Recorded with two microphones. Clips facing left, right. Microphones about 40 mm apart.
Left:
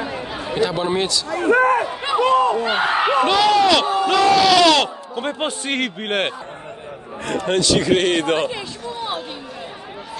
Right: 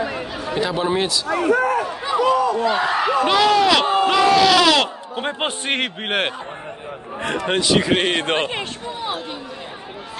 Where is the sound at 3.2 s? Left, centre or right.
Centre.